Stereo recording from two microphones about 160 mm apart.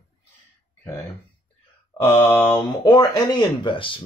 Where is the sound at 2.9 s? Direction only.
25° left (ahead or behind).